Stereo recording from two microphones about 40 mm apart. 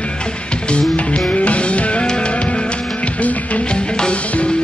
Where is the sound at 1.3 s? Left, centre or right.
Left.